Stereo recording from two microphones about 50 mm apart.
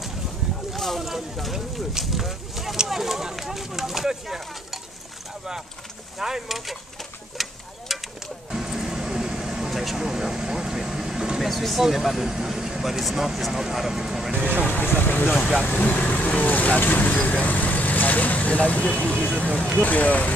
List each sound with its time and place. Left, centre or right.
0.7 s speech: centre
6.1 s speech: centre
7.4 s a sound: centre
8.5 s vehicle: centre
11.4 s speech: centre
14.3 s speech: right
14.7 s speech: left